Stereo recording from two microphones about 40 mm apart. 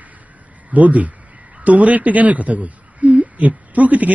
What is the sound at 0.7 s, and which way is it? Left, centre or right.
A man's voice, right.